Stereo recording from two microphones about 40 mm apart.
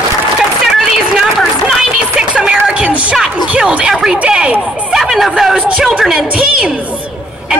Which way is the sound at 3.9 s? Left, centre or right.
Centre.